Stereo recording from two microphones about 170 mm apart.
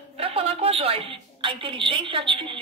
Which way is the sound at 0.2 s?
35° right (ahead or behind).